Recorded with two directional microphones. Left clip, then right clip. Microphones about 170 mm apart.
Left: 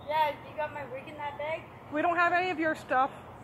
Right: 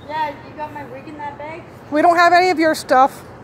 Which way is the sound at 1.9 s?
55° right (ahead or behind).